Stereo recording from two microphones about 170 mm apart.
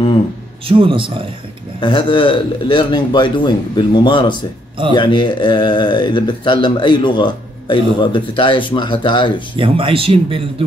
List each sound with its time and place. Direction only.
0.7 s speech: 30° right (ahead or behind)
1.8 s speech: 30° left (ahead or behind)
9.6 s speech: 30° right (ahead or behind)